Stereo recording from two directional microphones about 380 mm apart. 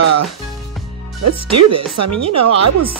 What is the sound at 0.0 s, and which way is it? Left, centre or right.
Music, right.